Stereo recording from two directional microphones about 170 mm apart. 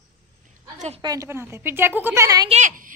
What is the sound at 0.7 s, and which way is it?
Speech, 40° right (ahead or behind).